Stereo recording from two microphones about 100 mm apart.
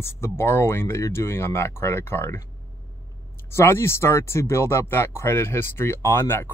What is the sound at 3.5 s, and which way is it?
Speech, 25° left (ahead or behind).